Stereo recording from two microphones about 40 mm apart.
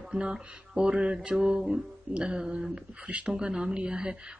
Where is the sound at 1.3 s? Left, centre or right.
Centre.